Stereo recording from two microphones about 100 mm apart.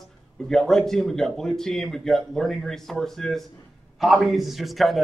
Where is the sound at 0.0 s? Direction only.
5° left (ahead or behind).